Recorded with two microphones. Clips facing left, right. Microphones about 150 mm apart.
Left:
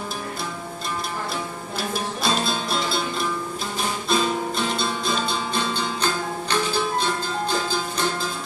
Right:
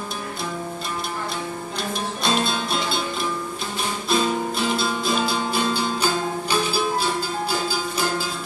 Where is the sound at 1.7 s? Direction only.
5° left (ahead or behind).